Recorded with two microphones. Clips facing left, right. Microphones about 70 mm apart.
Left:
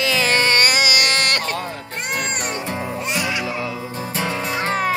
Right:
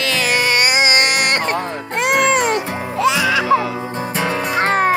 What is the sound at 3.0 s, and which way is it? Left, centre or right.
Music, right.